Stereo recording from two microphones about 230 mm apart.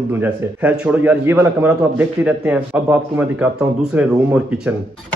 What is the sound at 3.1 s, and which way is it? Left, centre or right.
Speech, centre.